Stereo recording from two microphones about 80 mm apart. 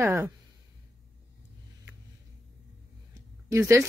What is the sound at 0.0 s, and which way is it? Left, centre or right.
Speech, right.